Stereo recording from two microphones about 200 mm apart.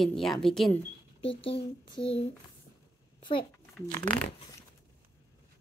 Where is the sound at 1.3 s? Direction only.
25° left (ahead or behind).